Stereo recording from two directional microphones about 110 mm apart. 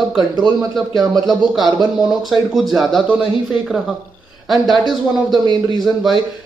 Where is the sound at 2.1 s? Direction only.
Centre (ahead or behind).